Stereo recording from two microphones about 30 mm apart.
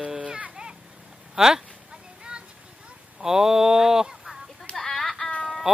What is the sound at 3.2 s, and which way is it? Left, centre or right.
Speech, centre.